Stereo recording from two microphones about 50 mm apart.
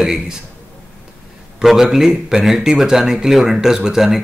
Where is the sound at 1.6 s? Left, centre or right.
Centre.